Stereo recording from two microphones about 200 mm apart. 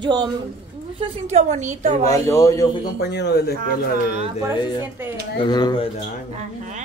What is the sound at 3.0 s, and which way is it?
Speech, 55° left (ahead or behind).